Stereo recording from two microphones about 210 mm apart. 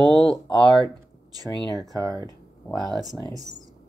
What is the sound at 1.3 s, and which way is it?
Speech, 15° right (ahead or behind).